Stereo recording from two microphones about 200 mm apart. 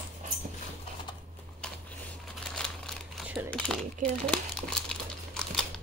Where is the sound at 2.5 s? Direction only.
5° left (ahead or behind).